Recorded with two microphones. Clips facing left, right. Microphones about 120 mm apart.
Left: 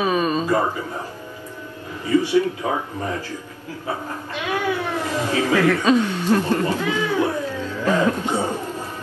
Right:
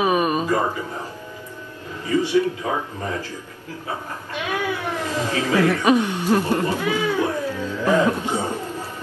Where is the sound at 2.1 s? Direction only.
15° left (ahead or behind).